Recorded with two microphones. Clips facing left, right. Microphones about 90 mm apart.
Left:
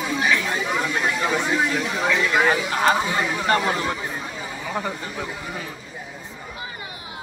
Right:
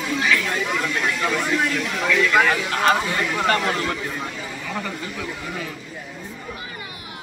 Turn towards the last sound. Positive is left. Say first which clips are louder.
# right 1 dB
turn(degrees=30)  # may be behind; listen again after turning